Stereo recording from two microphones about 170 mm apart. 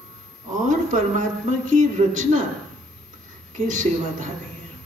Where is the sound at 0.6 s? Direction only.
50° right (ahead or behind).